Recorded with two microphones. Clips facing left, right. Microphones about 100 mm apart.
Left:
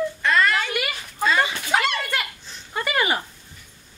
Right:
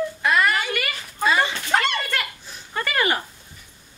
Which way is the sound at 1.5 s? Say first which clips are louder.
Even; 5° left (ahead or behind).